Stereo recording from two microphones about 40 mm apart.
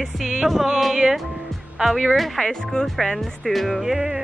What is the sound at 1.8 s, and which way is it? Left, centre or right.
Speech, right.